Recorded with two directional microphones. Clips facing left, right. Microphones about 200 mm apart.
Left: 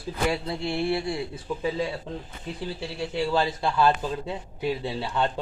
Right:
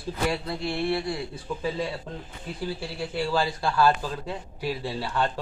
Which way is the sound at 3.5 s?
20° left (ahead or behind).